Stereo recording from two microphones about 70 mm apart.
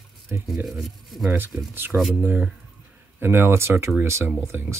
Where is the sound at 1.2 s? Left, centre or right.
Right.